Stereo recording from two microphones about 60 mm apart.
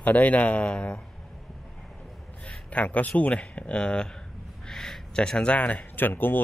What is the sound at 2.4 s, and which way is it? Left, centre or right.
Speech, left.